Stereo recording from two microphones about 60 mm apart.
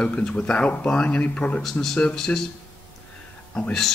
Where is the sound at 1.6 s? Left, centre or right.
Centre.